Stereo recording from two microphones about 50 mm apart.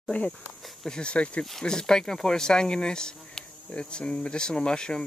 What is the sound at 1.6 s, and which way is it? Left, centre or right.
Speech, centre.